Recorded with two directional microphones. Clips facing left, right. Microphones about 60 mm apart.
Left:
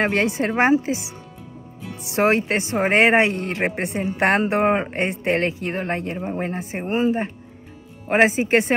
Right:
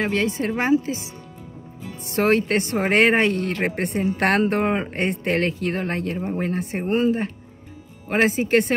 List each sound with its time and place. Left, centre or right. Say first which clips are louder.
0.0 s a woman's voice: left 2 dB; left
2.1 s speech: even; centre
3.8 s speech: even; centre